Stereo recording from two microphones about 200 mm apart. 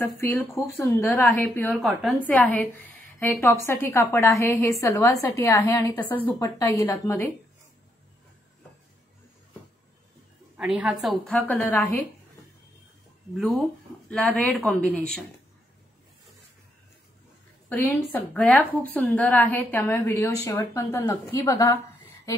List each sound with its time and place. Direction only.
0.0 s a woman's voice: 15° left (ahead or behind); by 2.1 s centre (ahead or behind)
2.1 s a woman's voice: 10° left (ahead or behind)
10.6 s a woman's voice: 5° right (ahead or behind)
14.0 s a woman's voice: 5° left (ahead or behind)
17.6 s a woman's voice: 10° left (ahead or behind)